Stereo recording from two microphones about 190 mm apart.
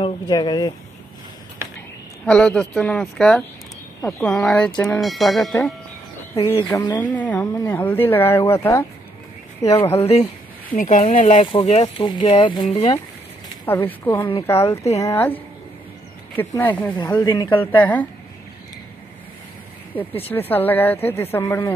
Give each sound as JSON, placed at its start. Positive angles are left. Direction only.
{"t": 0.0, "sound": "speech", "side_deg": 25}
{"t": 2.2, "sound": "speech", "side_deg": 5}
{"t": 6.3, "sound": "speech", "side_deg": 30}
{"t": 6.9, "sound": "speech", "side_deg": 10}
{"t": 9.9, "sound": "speech", "side_deg": 30}
{"t": 10.7, "sound": "speech", "side_deg": 45}
{"t": 13.7, "sound": "speech", "side_deg": 10}
{"t": 16.9, "sound": "speech", "side_deg": 20}
{"t": 17.6, "sound": "speech", "side_deg": 10}
{"t": 20.0, "sound": "speech", "side_deg": 10}